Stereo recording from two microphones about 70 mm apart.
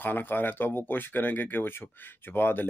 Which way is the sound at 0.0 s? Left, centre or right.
Left.